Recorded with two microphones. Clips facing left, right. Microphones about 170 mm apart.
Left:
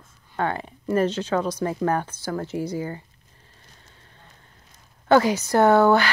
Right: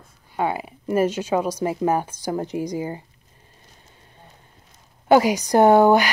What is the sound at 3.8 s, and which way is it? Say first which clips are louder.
Fire: right 3 dB; 15° right (ahead or behind).